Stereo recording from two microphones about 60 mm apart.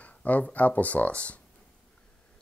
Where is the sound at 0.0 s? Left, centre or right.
Left.